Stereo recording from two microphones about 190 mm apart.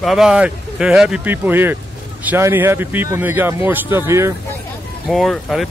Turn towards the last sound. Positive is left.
turn(degrees=0)  # may be behind; listen again after turning